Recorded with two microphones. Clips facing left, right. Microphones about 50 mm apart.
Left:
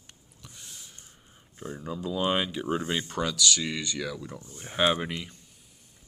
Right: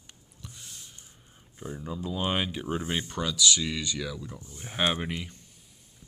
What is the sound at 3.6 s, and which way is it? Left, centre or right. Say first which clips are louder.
Speech: even; centre.